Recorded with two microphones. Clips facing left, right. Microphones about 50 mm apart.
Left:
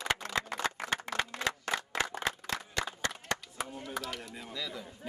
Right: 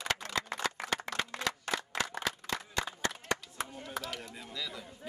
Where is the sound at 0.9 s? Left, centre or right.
Left.